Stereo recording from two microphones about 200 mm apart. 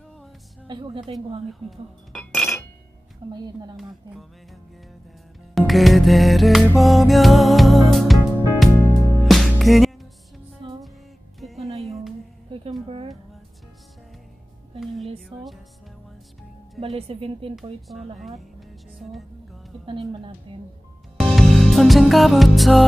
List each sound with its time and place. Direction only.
0.7 s a woman's voice: 20° right (ahead or behind)
2.1 s chink: centre (ahead or behind)
3.3 s a woman's voice: 20° right (ahead or behind)
5.5 s music: centre (ahead or behind)
10.6 s music: 25° right (ahead or behind)
11.3 s music: centre (ahead or behind)
15.1 s speech: centre (ahead or behind)
16.9 s a woman's voice: 30° right (ahead or behind)
18.6 s speech: centre (ahead or behind)
21.2 s music: centre (ahead or behind)